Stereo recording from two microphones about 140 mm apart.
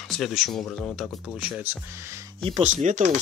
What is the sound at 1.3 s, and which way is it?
Speech, 10° right (ahead or behind).